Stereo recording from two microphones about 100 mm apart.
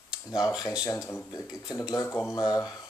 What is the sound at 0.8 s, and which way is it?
Speech, 30° left (ahead or behind).